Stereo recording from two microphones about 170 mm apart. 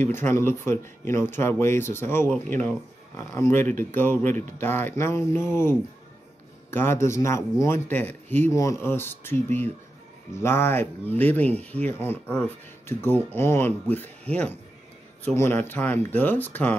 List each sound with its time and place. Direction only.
0.0 s speech: 10° left (ahead or behind)